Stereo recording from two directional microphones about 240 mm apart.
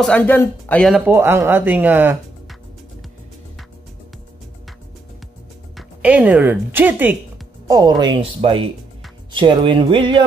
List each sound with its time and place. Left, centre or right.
0.0 s speech: centre
5.8 s speech: centre